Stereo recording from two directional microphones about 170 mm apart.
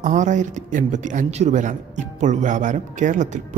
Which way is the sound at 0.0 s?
45° right (ahead or behind).